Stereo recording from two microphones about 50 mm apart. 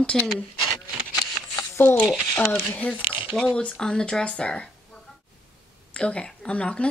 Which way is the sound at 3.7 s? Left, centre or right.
Centre.